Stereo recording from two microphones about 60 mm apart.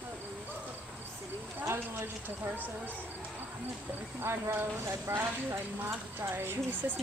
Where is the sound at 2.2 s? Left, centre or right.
Right.